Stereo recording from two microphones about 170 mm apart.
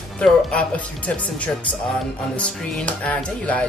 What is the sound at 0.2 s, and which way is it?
Speech, 5° left (ahead or behind).